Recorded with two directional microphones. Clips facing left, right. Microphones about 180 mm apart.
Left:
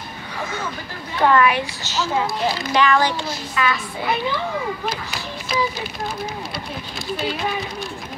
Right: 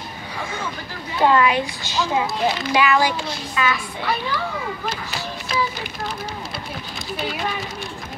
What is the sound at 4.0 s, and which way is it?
Speech, 20° left (ahead or behind).